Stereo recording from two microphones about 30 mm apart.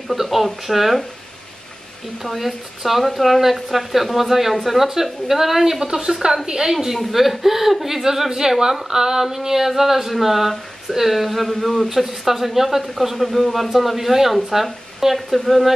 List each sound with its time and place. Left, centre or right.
0.1 s speech: centre
2.2 s speech: centre
6.4 s a woman's voice: right
6.7 s a woman's voice: centre
15.1 s speech: centre